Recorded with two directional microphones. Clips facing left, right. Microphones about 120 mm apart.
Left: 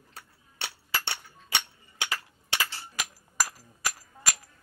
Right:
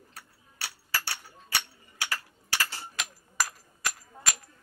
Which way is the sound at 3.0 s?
5° left (ahead or behind).